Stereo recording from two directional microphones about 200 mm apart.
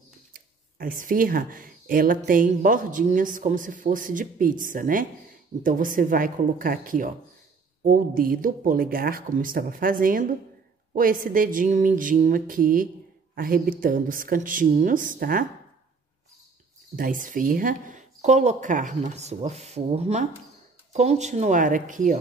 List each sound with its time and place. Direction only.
0.3 s speech: 45° right (ahead or behind)
16.9 s speech: 45° right (ahead or behind)